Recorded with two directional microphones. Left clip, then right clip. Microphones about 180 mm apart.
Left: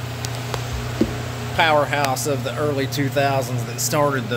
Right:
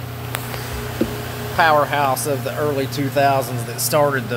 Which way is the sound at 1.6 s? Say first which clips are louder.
Right 2 dB; 10° left (ahead or behind).